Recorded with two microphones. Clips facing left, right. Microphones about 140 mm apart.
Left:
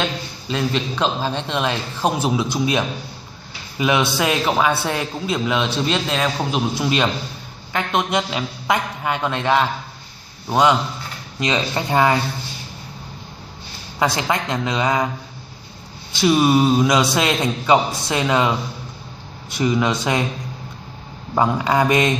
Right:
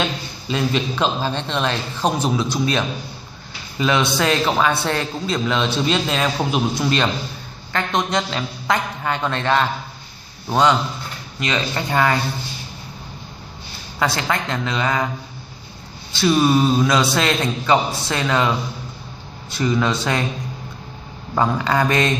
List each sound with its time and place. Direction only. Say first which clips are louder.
0.0 s a man's voice: even; 5° right (ahead or behind); by 12.2 s 20° left (ahead or behind)
13.9 s a man's voice: left 1 dB; 15° left (ahead or behind)
16.1 s a man's voice: left 1 dB; 15° left (ahead or behind)
21.4 s a man's voice: left 1 dB; 15° left (ahead or behind)